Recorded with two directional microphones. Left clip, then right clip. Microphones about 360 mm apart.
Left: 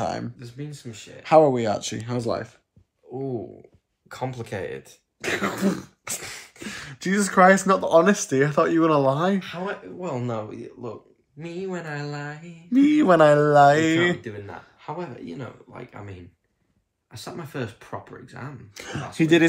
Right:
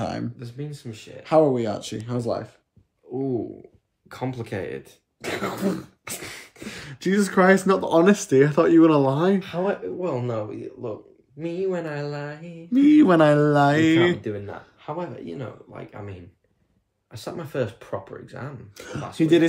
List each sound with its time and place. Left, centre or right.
0.0 s speech: centre
1.2 s speech: centre
4.1 s speech: centre
5.2 s speech: left
6.0 s a sound: centre
6.8 s speech: centre
9.4 s speech: right
9.9 s speech: centre
12.6 s speech: centre
12.9 s speech: centre
14.4 s speech: centre
18.8 s speech: left